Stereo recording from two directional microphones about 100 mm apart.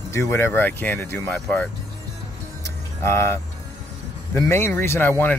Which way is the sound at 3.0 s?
25° left (ahead or behind).